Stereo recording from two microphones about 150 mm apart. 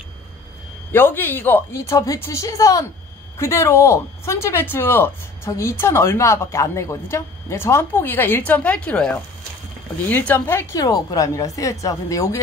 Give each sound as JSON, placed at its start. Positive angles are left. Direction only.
{"t": 0.9, "sound": "a woman's voice", "side_deg": 15}